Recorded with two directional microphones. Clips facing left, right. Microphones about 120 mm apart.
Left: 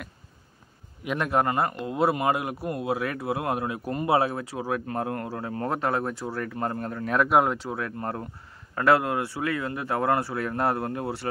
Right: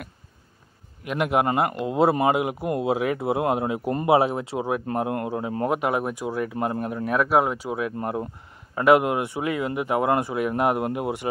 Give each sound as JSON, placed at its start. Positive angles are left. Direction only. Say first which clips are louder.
{"t": 1.1, "sound": "speech", "louder": "right 3 dB", "side_deg": -15}